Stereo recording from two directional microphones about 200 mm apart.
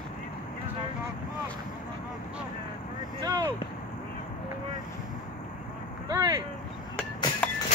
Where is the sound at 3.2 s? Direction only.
20° right (ahead or behind).